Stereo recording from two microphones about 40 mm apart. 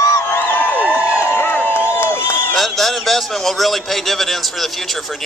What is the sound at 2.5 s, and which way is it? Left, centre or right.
A man's voice, centre.